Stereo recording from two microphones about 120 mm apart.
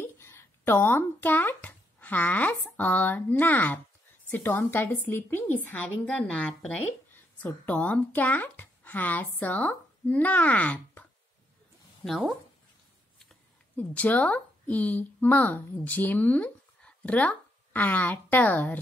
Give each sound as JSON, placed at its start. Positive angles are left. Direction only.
{"t": 0.0, "sound": "speech", "side_deg": 20}
{"t": 13.7, "sound": "speech", "side_deg": 15}